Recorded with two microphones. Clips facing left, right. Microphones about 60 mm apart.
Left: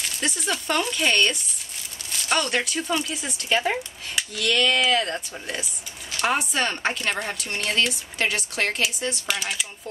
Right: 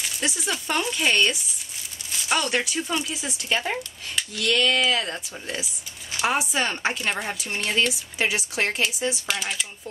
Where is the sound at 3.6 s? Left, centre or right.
Centre.